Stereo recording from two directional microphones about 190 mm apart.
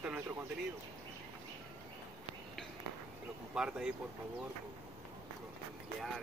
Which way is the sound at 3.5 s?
5° right (ahead or behind).